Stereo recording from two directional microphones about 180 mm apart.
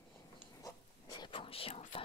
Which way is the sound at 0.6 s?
20° left (ahead or behind).